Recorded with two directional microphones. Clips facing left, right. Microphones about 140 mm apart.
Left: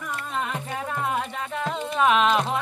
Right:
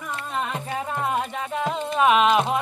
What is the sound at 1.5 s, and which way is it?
Music, 10° right (ahead or behind).